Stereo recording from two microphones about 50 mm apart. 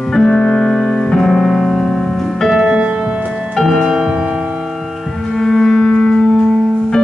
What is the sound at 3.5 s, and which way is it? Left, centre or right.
Music, centre.